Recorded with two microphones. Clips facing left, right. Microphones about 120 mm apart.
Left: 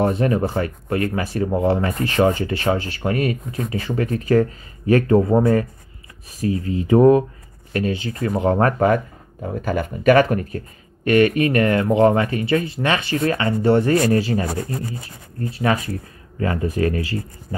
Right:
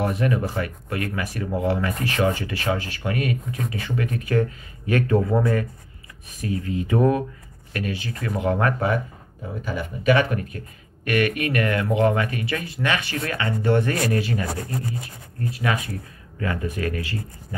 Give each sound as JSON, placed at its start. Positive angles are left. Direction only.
{"t": 0.0, "sound": "speech", "side_deg": 30}
{"t": 11.1, "sound": "speech", "side_deg": 30}
{"t": 15.5, "sound": "speech", "side_deg": 35}